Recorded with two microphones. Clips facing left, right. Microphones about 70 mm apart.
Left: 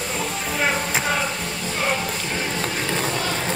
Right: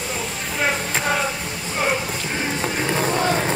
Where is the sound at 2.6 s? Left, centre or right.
Centre.